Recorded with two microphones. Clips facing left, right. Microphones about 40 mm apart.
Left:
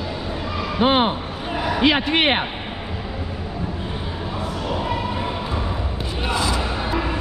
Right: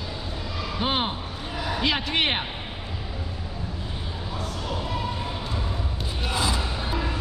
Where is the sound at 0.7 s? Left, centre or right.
Left.